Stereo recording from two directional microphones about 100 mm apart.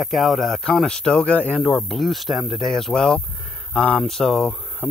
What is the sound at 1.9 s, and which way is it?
Speech, centre (ahead or behind).